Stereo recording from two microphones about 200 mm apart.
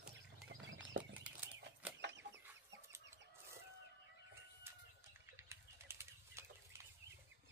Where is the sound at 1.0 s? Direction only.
65° right (ahead or behind).